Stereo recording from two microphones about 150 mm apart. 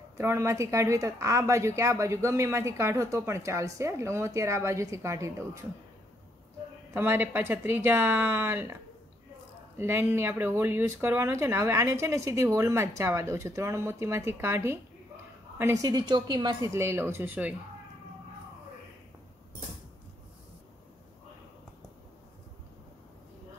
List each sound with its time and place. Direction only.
0.2 s a woman's voice: 15° right (ahead or behind)
6.9 s speech: 15° right (ahead or behind)
9.8 s a woman's voice: 15° right (ahead or behind)
16.6 s speech: 20° right (ahead or behind)